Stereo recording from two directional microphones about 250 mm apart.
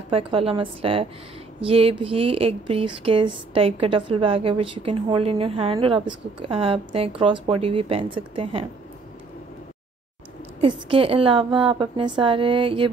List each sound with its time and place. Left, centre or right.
0.1 s a woman's voice: right
10.6 s a woman's voice: right